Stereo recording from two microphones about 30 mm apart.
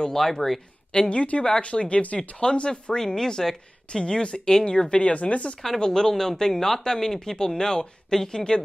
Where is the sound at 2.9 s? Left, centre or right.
Centre; by 5.5 s left.